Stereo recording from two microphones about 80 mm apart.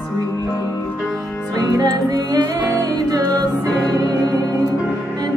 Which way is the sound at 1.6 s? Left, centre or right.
Right.